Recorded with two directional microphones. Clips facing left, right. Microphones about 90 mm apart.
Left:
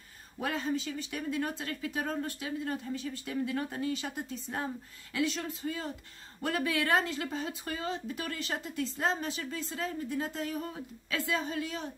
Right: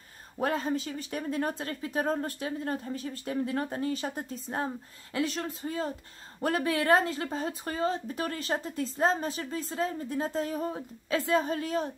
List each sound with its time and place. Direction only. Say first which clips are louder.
0.4 s speech: right 4 dB; 40° right (ahead or behind)